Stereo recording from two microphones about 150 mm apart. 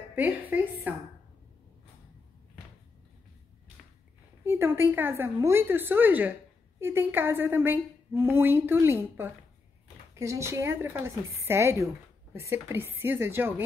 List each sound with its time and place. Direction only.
0.1 s a woman's voice: 10° right (ahead or behind)
4.5 s a woman's voice: 15° right (ahead or behind)